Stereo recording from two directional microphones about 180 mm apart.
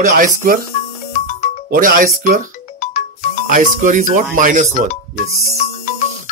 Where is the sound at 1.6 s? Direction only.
50° right (ahead or behind).